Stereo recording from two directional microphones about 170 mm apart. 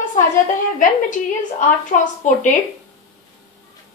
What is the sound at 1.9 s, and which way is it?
Speech, 45° left (ahead or behind).